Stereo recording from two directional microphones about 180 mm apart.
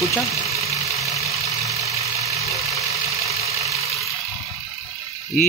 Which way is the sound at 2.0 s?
35° left (ahead or behind).